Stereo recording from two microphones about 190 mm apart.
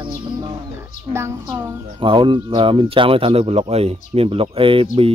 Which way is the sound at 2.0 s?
25° right (ahead or behind).